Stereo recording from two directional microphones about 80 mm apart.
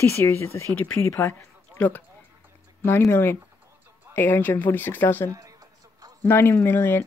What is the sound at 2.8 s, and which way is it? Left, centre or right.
Speech, left.